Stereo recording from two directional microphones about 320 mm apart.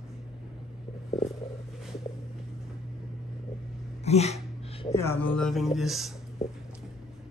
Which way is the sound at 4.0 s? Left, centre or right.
Centre.